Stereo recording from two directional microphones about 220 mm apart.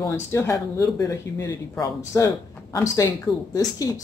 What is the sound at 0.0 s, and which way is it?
Speech, 10° left (ahead or behind).